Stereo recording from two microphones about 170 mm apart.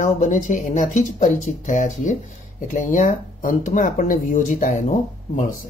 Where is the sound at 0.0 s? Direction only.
45° left (ahead or behind).